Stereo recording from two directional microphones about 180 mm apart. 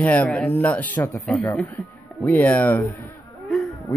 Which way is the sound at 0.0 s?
5° left (ahead or behind).